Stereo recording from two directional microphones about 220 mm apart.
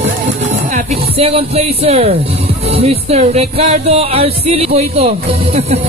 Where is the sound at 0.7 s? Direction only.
25° right (ahead or behind).